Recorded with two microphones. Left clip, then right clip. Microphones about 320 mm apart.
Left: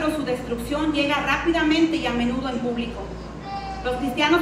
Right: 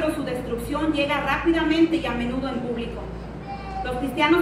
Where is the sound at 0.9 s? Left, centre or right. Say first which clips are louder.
Left 1 dB; left.